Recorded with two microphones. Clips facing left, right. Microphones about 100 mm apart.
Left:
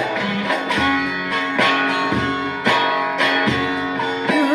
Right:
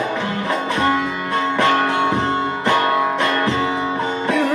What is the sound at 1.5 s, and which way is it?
Music, 30° right (ahead or behind).